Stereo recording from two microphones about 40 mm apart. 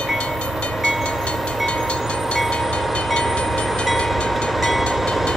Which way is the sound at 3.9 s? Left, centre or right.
Centre.